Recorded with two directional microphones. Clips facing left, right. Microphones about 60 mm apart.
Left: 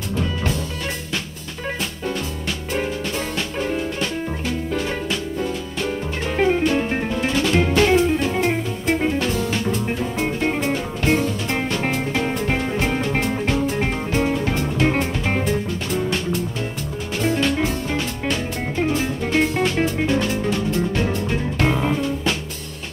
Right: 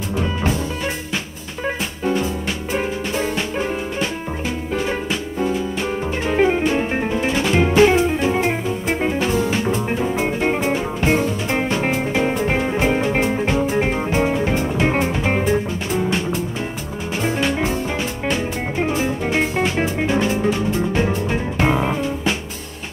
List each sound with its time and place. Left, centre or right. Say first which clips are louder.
0.1 s music: right 2 dB; centre
6.2 s music: right 1 dB; centre